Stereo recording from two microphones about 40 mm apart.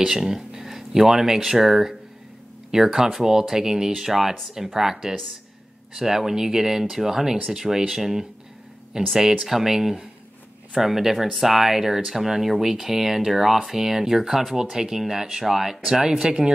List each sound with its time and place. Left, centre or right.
0.0 s speech: centre
5.9 s speech: centre